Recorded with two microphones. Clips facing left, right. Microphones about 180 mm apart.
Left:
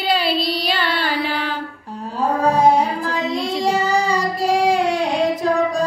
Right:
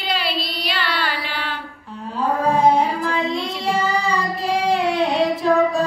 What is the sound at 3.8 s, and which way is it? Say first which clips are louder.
Child singing: left 2 dB; 40° left (ahead or behind).